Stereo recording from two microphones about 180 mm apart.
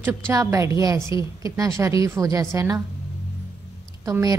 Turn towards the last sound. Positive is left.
turn(degrees=-20)  # may be behind; listen again after turning